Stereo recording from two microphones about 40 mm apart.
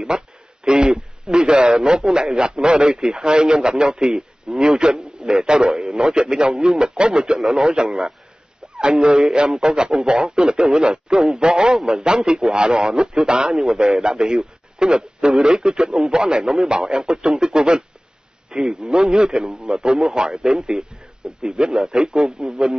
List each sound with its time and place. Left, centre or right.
0.1 s a man's voice: centre
7.0 s a man's voice: right
7.3 s a man's voice: centre
9.0 s a man's voice: centre